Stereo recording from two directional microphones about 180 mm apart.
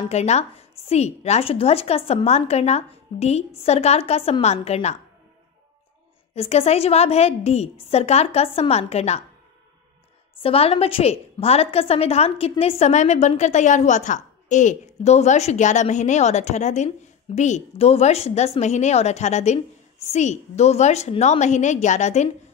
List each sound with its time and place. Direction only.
0.1 s a woman's voice: 35° left (ahead or behind)
6.3 s a woman's voice: 35° left (ahead or behind)
10.4 s a woman's voice: 30° left (ahead or behind)